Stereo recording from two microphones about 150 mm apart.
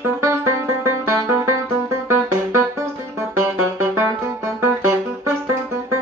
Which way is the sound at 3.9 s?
20° right (ahead or behind).